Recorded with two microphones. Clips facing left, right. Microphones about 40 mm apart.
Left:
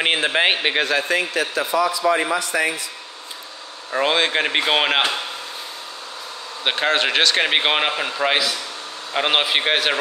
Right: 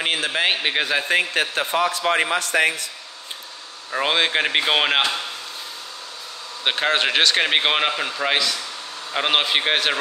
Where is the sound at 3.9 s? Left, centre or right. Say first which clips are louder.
Left 1 dB; centre.